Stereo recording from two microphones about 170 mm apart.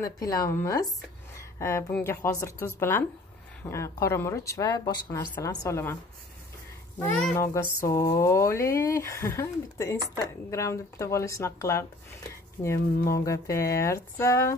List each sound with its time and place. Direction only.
0.0 s speech: 20° left (ahead or behind)
7.0 s a child's voice: 5° left (ahead or behind)
7.3 s speech: 15° left (ahead or behind)
12.6 s speech: 30° left (ahead or behind)
13.2 s speech: 20° left (ahead or behind)